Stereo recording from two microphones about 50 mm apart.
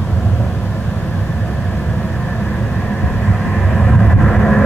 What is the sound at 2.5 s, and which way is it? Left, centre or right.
Vehicle, centre.